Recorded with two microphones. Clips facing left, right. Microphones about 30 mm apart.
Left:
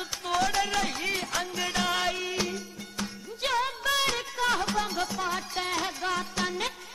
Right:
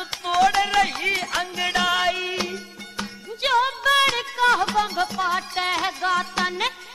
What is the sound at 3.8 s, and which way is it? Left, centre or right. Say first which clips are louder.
Music: right 8 dB; right.